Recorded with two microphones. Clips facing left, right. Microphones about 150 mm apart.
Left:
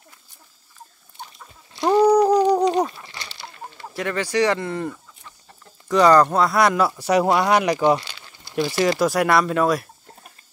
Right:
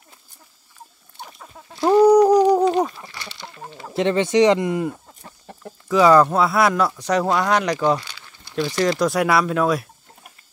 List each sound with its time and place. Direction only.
1.8 s a sound: 10° right (ahead or behind)
3.7 s speech: 25° right (ahead or behind)
4.9 s chicken: 45° right (ahead or behind)
5.9 s speech: 5° right (ahead or behind); by 8.6 s 25° left (ahead or behind)
8.6 s speech: 5° left (ahead or behind)